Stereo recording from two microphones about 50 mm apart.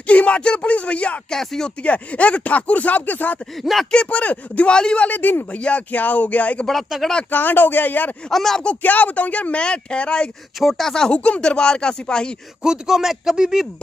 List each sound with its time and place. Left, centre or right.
0.0 s speech: left
1.3 s speech: centre
1.8 s speech: left
4.7 s speech: centre
5.0 s speech: left
5.5 s speech: left
8.3 s speech: centre
8.8 s speech: left
10.6 s speech: centre
11.1 s speech: left
12.6 s speech: centre